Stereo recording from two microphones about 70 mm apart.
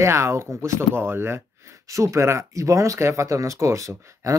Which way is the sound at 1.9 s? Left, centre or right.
Right.